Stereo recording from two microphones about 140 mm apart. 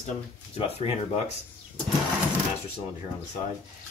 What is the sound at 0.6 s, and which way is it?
Speech, 50° left (ahead or behind).